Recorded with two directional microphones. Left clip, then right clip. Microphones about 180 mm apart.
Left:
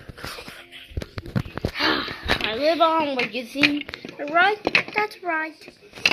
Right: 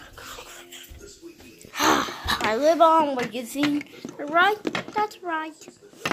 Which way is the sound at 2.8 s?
15° right (ahead or behind).